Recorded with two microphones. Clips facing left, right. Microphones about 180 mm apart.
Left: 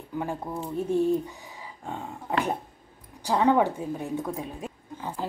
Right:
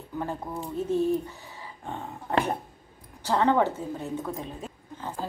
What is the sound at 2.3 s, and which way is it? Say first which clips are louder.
A woman's voice: right 1 dB; 10° left (ahead or behind).